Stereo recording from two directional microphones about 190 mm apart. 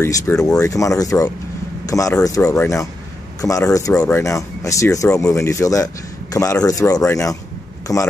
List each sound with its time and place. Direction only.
0.0 s a man's voice: 15° left (ahead or behind)